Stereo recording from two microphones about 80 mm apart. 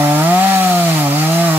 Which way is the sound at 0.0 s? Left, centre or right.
Right.